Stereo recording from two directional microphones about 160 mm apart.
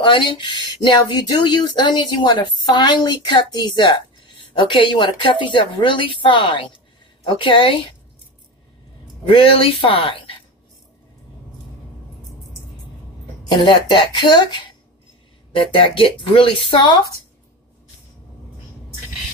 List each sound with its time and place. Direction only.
0.0 s speech: 30° left (ahead or behind)
9.3 s speech: 35° left (ahead or behind)
13.5 s speech: 30° left (ahead or behind)